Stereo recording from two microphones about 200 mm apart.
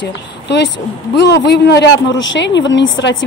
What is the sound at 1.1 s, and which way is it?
A woman's voice, 60° left (ahead or behind).